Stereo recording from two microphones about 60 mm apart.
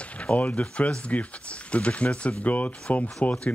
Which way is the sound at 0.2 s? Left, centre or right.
Centre.